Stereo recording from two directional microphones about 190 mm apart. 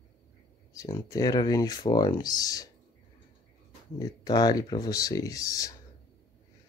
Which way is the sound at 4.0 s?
20° left (ahead or behind).